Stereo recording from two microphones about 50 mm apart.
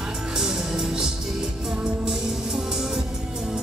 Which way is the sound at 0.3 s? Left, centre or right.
Centre.